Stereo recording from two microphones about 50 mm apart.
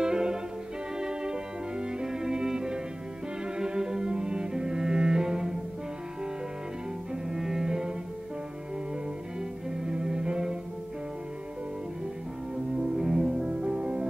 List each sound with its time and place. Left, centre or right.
0.0 s music: centre
3.5 s cello: centre
7.2 s cello: centre
9.8 s music: centre
12.7 s music: centre